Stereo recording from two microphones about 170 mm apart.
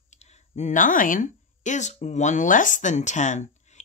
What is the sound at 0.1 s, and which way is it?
Speech, 40° left (ahead or behind).